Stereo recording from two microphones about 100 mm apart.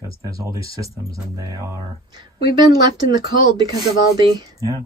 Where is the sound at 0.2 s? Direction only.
35° right (ahead or behind).